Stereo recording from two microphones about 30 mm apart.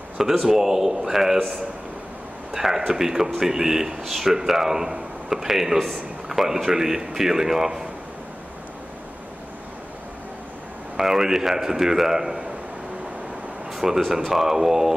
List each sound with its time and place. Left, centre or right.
0.2 s a man's voice: centre
2.5 s a man's voice: centre
5.8 s a man's voice: centre
6.2 s a man's voice: centre
11.0 s a man's voice: centre
13.7 s a man's voice: centre